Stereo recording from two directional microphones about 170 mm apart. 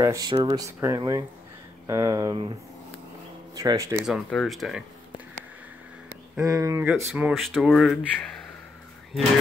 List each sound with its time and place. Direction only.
0.0 s speech: 20° right (ahead or behind)
3.5 s speech: 20° right (ahead or behind)
4.0 s speech: centre (ahead or behind)
6.0 s speech: 15° right (ahead or behind); by 8.4 s centre (ahead or behind)